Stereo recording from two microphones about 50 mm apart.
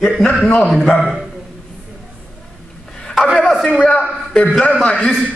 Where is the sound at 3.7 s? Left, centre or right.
Left.